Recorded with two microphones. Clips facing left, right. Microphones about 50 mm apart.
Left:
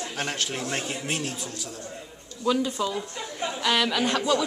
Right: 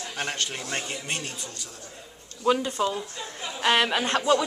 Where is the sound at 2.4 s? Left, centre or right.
Right.